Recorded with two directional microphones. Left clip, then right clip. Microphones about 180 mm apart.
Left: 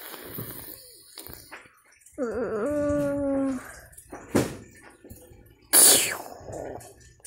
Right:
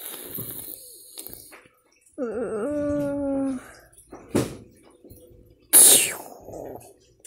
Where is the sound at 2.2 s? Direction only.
25° right (ahead or behind).